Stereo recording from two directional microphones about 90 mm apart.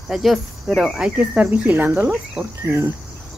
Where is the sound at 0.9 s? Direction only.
15° right (ahead or behind).